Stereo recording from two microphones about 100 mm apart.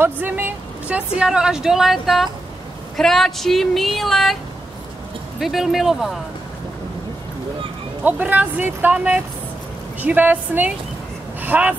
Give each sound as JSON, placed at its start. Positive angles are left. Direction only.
{"t": 0.0, "sound": "a woman's voice", "side_deg": -20}
{"t": 5.4, "sound": "speech", "side_deg": 0}
{"t": 8.0, "sound": "speech", "side_deg": -15}